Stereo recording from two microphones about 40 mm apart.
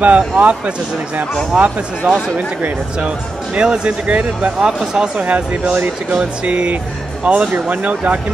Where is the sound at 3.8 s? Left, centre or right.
Right.